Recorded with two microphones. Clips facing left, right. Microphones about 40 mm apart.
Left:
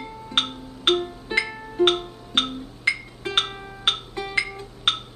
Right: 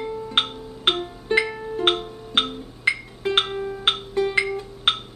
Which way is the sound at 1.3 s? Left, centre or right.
Centre.